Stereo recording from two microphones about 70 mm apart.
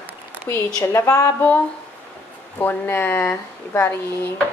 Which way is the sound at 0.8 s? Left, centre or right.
Left.